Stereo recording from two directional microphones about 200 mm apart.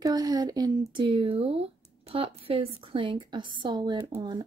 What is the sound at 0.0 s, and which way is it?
Speech, 20° right (ahead or behind).